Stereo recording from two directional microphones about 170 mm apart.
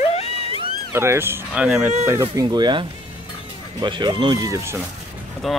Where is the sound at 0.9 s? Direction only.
15° right (ahead or behind).